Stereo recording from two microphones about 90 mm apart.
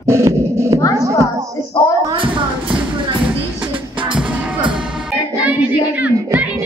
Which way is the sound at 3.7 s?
70° right (ahead or behind).